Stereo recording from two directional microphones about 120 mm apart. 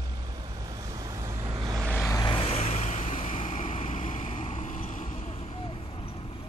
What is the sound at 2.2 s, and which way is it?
Vehicle, 50° left (ahead or behind).